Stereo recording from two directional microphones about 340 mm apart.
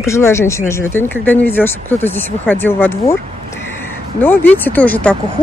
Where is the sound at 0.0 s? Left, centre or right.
Centre.